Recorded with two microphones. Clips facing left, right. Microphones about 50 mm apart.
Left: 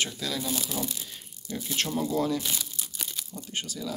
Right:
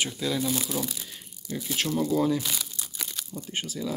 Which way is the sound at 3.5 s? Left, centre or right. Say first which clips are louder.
Right 2 dB; centre.